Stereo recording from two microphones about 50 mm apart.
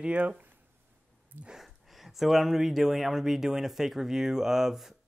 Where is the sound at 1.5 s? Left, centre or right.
Centre.